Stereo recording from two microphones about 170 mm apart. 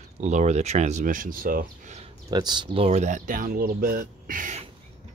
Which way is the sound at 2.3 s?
25° right (ahead or behind).